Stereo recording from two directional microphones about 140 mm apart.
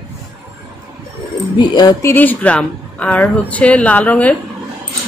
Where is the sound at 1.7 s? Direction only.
30° left (ahead or behind).